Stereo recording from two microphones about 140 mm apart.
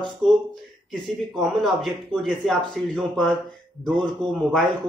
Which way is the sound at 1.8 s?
Centre (ahead or behind).